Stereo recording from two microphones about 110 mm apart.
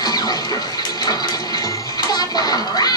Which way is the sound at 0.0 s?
35° left (ahead or behind).